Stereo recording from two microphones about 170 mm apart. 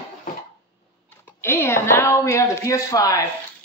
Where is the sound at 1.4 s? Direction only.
15° left (ahead or behind).